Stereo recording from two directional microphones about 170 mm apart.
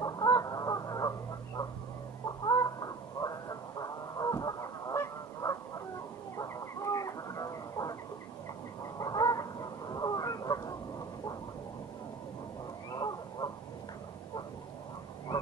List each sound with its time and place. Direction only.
0.0 s goose: 20° left (ahead or behind)
2.2 s chicken: 20° left (ahead or behind)
6.3 s a sound: 20° left (ahead or behind)
8.9 s chicken: 20° left (ahead or behind)
12.9 s crow: 25° left (ahead or behind)